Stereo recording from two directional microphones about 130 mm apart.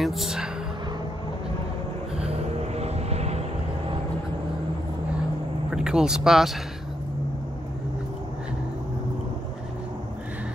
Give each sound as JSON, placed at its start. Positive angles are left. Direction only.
{"t": 0.0, "sound": "speech", "side_deg": 0}
{"t": 2.1, "sound": "vehicle", "side_deg": -50}
{"t": 5.7, "sound": "speech", "side_deg": -5}